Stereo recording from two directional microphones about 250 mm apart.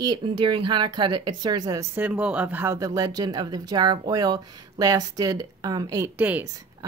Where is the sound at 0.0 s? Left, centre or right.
Centre.